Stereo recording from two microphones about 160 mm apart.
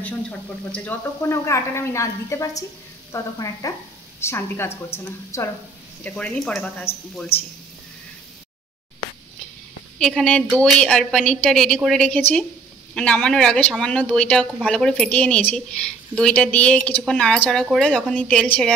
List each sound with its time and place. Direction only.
0.0 s speech: 10° left (ahead or behind)
9.9 s a woman's voice: 5° left (ahead or behind)